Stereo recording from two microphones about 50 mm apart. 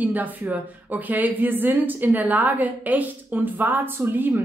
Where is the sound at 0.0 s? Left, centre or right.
Right.